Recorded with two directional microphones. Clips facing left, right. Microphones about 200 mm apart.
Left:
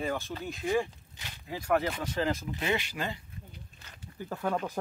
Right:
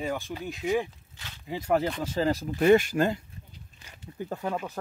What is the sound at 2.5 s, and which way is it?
Speech, 45° right (ahead or behind).